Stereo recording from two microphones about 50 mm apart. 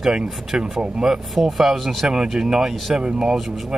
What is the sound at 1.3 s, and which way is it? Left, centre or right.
Speech, centre.